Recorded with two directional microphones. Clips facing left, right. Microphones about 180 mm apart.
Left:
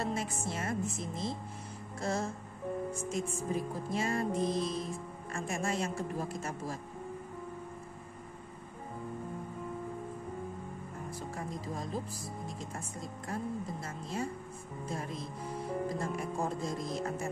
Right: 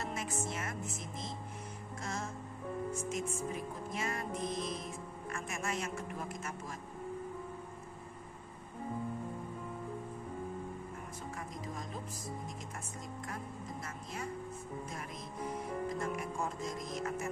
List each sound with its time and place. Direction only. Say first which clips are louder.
0.0 s music: left 4 dB; 30° left (ahead or behind)
11.3 s music: left 4 dB; 30° left (ahead or behind)
13.8 s a woman's voice: left 5 dB; 30° left (ahead or behind)
14.9 s music: left 5 dB; 30° left (ahead or behind)